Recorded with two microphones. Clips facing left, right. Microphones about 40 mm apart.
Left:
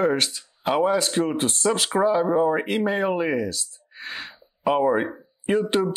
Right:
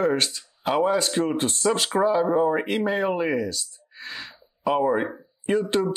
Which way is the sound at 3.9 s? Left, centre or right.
Left.